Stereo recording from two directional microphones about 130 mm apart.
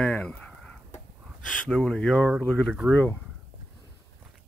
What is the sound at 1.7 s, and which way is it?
Speech, 5° left (ahead or behind).